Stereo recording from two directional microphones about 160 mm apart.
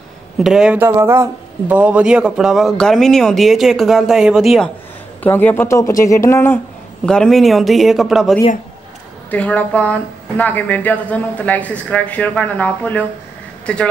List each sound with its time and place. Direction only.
0.4 s speech: 5° right (ahead or behind)
5.2 s speech: 10° left (ahead or behind)
7.1 s speech: 5° left (ahead or behind)
9.3 s speech: 10° left (ahead or behind)